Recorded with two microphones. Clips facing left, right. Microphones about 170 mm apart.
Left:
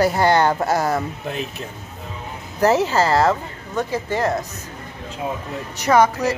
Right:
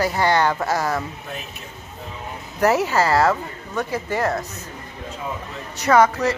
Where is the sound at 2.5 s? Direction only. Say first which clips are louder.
Left 2 dB; 25° left (ahead or behind).